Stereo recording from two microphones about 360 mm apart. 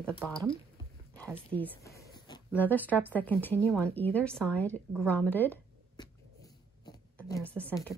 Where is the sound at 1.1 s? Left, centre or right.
Centre.